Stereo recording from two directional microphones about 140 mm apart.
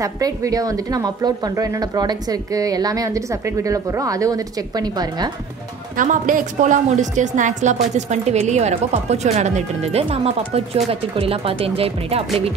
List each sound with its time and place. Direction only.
0.0 s a woman's voice: 25° right (ahead or behind)
5.9 s a woman's voice: 70° right (ahead or behind); by 12.5 s 45° right (ahead or behind)